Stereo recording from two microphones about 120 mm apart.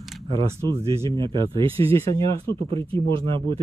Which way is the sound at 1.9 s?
25° left (ahead or behind).